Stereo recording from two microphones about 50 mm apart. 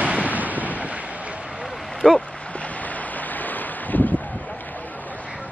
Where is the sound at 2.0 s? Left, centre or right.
Centre.